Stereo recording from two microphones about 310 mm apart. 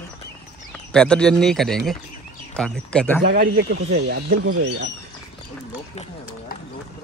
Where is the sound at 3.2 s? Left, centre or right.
Right.